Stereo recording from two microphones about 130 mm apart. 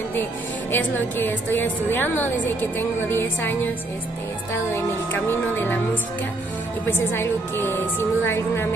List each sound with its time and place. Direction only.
0.7 s a woman's voice: 15° left (ahead or behind)
4.7 s a woman's voice: 15° left (ahead or behind)
6.9 s a woman's voice: 15° left (ahead or behind)